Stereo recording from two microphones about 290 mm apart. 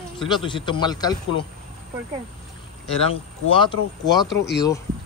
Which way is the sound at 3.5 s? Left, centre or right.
Centre.